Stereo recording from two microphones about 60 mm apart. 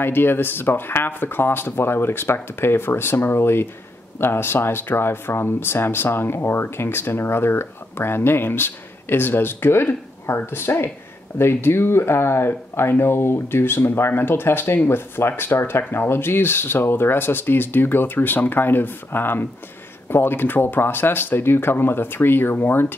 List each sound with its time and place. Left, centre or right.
0.0 s speech: left